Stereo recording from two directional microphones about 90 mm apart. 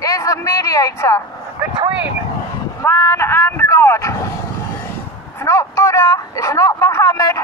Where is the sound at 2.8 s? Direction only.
30° left (ahead or behind).